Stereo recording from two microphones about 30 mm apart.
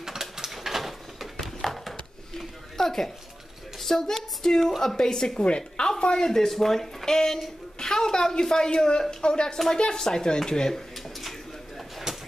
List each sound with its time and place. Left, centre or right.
0.0 s sewing machine: centre
0.5 s a sound: centre
3.8 s a woman's voice: centre
5.8 s a woman's voice: left
6.4 s a woman's voice: centre
7.1 s a woman's voice: centre
10.7 s a sound: centre